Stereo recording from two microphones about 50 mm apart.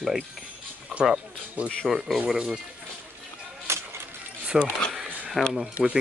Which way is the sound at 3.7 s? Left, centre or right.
Right.